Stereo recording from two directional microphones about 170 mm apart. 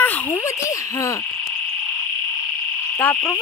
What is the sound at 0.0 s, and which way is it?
Frog, 10° left (ahead or behind).